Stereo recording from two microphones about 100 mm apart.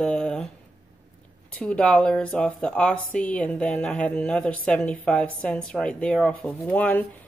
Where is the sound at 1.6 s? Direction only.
10° left (ahead or behind).